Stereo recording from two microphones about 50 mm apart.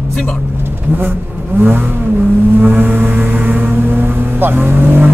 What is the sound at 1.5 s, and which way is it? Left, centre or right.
Vehicle, right.